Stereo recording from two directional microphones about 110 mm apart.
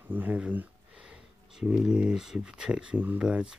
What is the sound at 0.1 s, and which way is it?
Speech, 15° right (ahead or behind).